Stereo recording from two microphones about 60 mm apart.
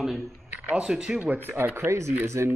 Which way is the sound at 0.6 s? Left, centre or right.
Centre.